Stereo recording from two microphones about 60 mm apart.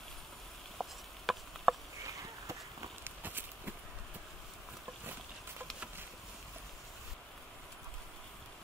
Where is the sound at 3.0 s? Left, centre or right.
Right.